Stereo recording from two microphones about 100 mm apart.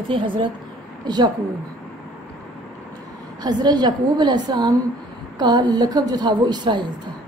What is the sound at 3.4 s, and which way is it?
A woman's voice, 45° right (ahead or behind).